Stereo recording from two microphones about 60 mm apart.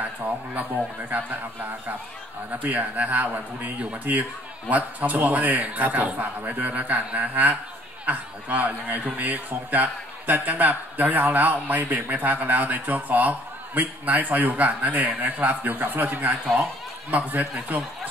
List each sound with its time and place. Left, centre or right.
0.0 s a man's voice: right